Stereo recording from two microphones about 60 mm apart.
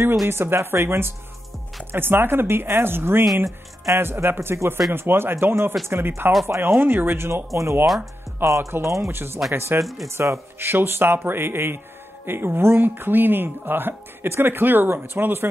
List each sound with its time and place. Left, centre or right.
0.3 s speech: right
3.4 s speech: right
4.0 s speech: right
7.8 s speech: centre
8.5 s speech: right
9.1 s speech: right